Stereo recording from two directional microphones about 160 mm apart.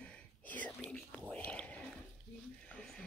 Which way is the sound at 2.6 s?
5° left (ahead or behind).